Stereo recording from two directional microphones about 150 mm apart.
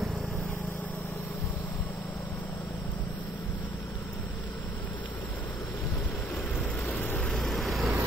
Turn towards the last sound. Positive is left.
turn(degrees=0)  # may be behind; listen again after turning